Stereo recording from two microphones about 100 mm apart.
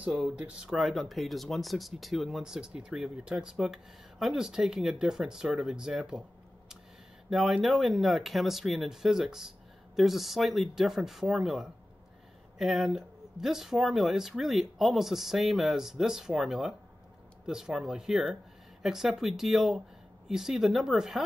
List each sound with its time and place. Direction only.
0.0 s speech: 10° right (ahead or behind)
7.2 s speech: centre (ahead or behind)